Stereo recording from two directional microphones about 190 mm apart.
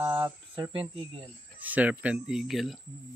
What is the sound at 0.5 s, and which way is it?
Speech, 25° right (ahead or behind).